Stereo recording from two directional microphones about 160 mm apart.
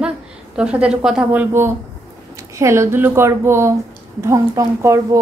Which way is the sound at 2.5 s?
15° right (ahead or behind).